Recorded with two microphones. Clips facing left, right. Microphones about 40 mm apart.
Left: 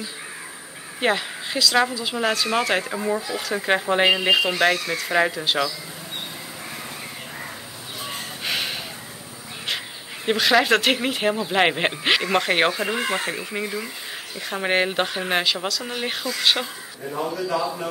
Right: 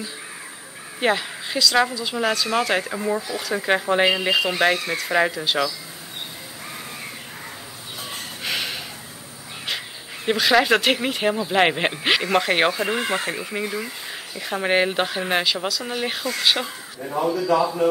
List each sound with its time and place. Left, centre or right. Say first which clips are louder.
1.0 s speech: right 1 dB; centre
8.5 s snort: even; centre
10.2 s speech: right 1 dB; centre